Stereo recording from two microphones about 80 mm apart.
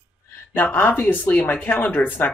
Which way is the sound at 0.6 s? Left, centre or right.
Left.